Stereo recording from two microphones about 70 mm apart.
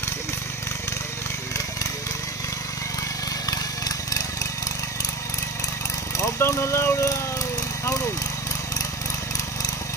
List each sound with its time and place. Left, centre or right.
3.4 s vehicle: left
6.4 s speech: left